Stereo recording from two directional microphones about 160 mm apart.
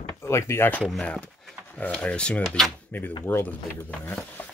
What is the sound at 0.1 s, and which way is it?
Speech, 15° left (ahead or behind).